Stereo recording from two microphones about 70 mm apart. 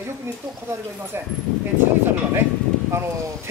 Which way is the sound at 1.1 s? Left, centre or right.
Right.